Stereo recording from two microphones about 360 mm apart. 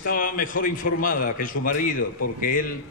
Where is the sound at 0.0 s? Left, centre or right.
Left.